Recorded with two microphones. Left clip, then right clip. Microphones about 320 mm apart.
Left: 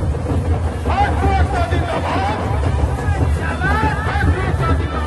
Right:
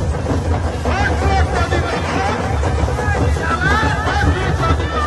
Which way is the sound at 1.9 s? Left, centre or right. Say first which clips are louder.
Even; centre.